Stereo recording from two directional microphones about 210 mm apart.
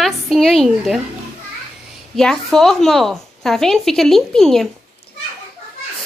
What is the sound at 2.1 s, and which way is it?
A woman's voice, centre (ahead or behind).